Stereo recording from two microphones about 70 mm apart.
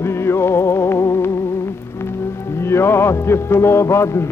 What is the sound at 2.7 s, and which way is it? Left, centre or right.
Music, left.